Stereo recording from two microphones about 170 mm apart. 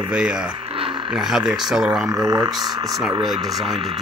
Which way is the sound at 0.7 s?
30° right (ahead or behind).